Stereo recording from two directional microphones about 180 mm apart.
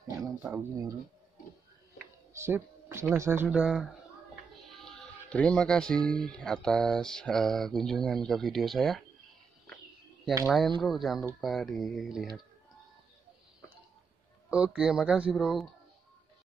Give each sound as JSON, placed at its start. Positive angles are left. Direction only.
{"t": 0.2, "sound": "speech", "side_deg": -15}
{"t": 2.3, "sound": "speech", "side_deg": -15}
{"t": 4.7, "sound": "a sound", "side_deg": 5}
{"t": 6.0, "sound": "speech", "side_deg": 5}
{"t": 10.4, "sound": "speech", "side_deg": 0}
{"t": 14.5, "sound": "speech", "side_deg": -5}